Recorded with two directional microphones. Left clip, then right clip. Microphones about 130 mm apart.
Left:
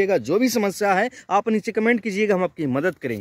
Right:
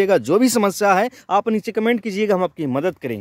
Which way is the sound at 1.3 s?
5° right (ahead or behind).